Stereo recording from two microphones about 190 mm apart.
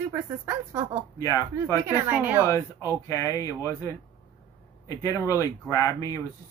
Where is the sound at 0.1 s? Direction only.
15° right (ahead or behind).